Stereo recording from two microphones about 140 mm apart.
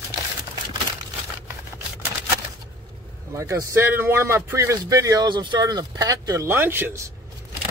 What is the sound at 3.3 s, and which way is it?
Speech, 20° right (ahead or behind).